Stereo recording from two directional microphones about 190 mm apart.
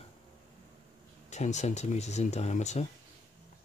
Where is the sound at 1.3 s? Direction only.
40° left (ahead or behind).